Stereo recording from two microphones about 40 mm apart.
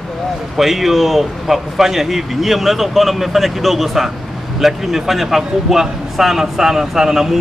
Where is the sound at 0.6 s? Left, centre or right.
Centre.